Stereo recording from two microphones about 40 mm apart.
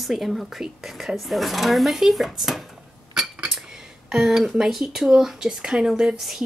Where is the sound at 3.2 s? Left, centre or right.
Centre.